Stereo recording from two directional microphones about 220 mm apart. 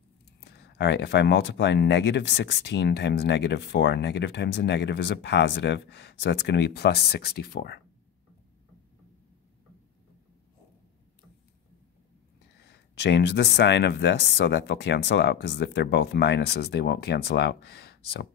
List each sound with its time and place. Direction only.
0.4 s speech: 50° left (ahead or behind)
12.5 s speech: 50° left (ahead or behind)